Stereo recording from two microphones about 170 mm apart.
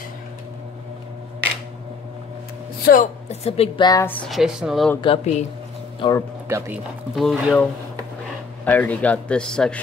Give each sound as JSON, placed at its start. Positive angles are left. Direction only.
{"t": 2.8, "sound": "speech", "side_deg": 55}
{"t": 3.3, "sound": "speech", "side_deg": 35}
{"t": 4.3, "sound": "speech", "side_deg": -5}
{"t": 5.0, "sound": "speech", "side_deg": 35}
{"t": 6.0, "sound": "a man's voice", "side_deg": 30}
{"t": 7.2, "sound": "speech", "side_deg": 0}
{"t": 8.6, "sound": "a man's voice", "side_deg": 10}